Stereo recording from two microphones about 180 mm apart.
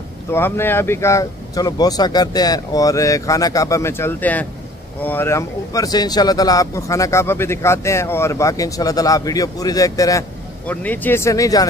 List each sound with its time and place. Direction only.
0.3 s speech: 15° left (ahead or behind)